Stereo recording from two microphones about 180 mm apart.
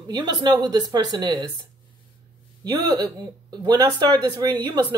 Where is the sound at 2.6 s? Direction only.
25° right (ahead or behind).